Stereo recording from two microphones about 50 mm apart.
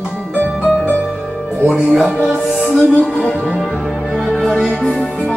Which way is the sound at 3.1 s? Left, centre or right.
Left.